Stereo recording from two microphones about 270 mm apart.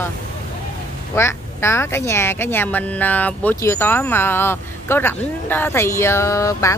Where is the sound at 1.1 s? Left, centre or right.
Centre.